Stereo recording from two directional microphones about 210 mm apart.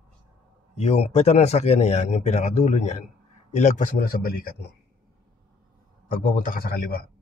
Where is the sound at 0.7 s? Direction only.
30° left (ahead or behind).